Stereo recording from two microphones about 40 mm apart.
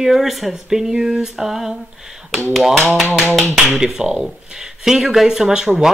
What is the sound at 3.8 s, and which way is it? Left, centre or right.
Speech, right.